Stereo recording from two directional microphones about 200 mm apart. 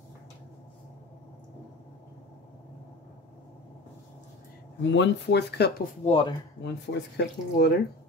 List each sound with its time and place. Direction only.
4.8 s speech: 65° left (ahead or behind)
6.0 s speech: 25° left (ahead or behind)
6.6 s speech: 60° left (ahead or behind)